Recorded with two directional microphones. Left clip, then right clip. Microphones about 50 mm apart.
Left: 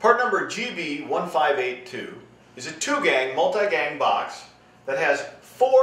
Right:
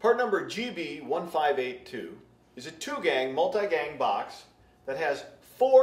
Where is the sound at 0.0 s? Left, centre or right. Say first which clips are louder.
Left 6 dB; left.